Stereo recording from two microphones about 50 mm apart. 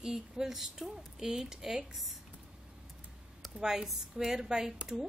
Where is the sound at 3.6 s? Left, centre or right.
Centre.